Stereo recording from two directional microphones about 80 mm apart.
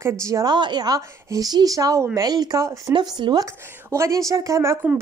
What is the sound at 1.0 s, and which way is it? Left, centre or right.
Speech, right.